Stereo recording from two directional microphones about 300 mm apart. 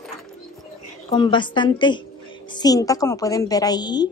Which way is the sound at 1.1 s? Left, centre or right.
Centre.